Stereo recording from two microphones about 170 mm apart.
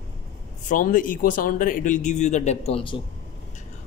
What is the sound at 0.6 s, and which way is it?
Speech, 50° left (ahead or behind).